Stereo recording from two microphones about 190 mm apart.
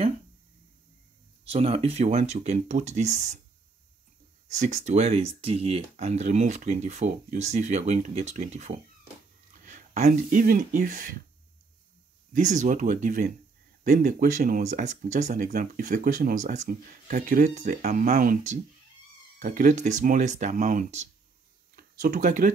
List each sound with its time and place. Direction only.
1.4 s speech: 30° right (ahead or behind)
4.5 s speech: 40° right (ahead or behind)
12.3 s speech: 40° right (ahead or behind)